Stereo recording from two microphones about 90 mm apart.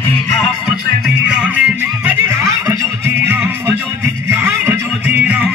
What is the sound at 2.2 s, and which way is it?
Music, 35° right (ahead or behind).